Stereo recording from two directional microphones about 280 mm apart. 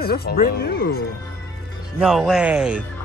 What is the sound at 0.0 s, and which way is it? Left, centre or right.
Speech, left.